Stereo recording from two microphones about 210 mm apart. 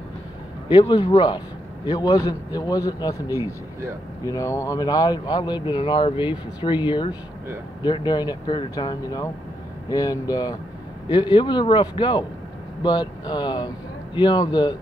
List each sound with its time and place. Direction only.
0.7 s a man's voice: 20° left (ahead or behind)